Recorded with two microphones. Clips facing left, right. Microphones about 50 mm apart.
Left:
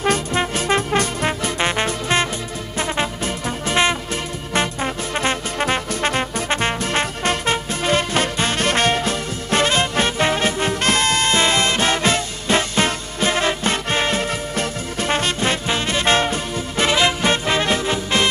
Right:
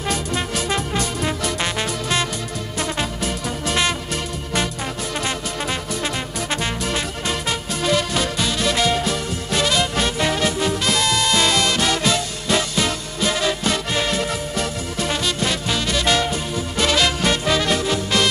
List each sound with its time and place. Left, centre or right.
0.0 s music: left